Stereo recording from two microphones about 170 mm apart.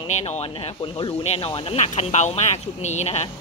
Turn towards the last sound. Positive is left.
turn(degrees=40)  # may be behind; listen again after turning